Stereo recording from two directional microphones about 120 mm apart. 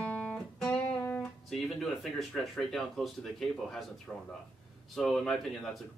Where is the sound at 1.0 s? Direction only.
15° left (ahead or behind).